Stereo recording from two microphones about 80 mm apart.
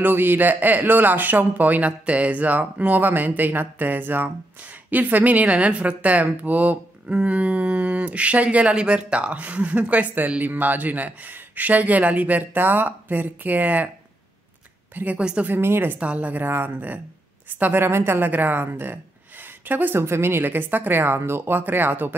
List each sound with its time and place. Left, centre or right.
0.0 s speech: right
15.0 s a woman's voice: centre
15.5 s speech: right